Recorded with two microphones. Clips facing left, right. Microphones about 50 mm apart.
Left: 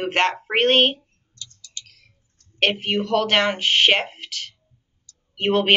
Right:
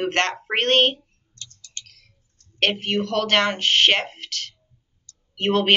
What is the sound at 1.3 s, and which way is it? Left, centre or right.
Clicking, right.